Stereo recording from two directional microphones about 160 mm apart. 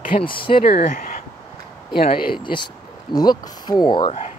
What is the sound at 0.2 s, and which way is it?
Speech, 30° left (ahead or behind).